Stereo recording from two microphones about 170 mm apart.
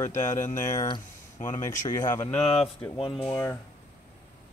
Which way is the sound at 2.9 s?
30° left (ahead or behind).